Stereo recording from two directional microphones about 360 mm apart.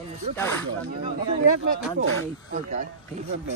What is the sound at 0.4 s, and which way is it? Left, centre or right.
Speech, centre.